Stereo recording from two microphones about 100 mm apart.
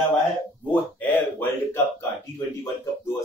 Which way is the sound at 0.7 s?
15° left (ahead or behind).